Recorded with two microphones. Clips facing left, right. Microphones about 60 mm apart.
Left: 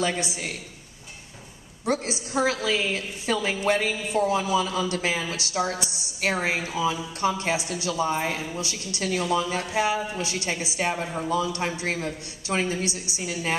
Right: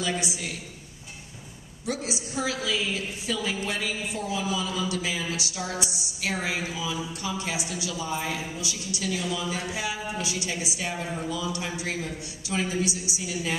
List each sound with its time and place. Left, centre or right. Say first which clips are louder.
0.2 s a woman's voice: left 2 dB; left
1.9 s a woman's voice: left 5 dB; left